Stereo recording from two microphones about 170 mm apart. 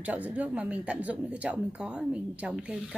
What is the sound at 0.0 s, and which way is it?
A woman's voice, 10° right (ahead or behind).